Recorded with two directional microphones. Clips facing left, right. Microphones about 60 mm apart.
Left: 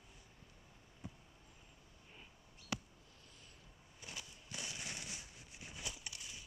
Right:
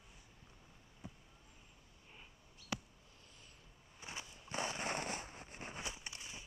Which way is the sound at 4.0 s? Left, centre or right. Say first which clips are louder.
Right 3 dB; right.